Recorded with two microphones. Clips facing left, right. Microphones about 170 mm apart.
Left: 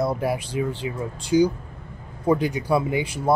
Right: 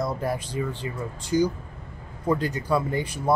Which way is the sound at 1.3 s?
10° left (ahead or behind).